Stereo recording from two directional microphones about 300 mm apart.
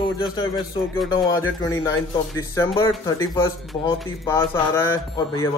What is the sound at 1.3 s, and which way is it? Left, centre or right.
Speech, centre.